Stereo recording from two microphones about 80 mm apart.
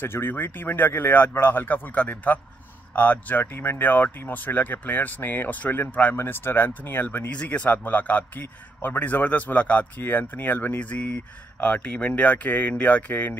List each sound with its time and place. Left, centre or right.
0.0 s a man's voice: left